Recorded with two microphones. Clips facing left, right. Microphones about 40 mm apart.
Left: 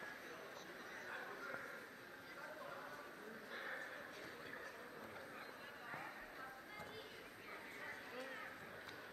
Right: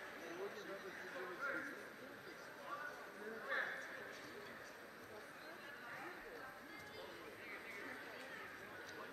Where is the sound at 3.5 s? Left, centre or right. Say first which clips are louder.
Right 10 dB; right.